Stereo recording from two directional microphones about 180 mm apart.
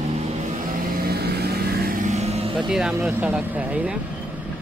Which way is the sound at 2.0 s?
35° right (ahead or behind).